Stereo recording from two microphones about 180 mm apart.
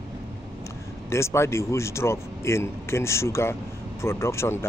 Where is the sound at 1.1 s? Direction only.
15° left (ahead or behind).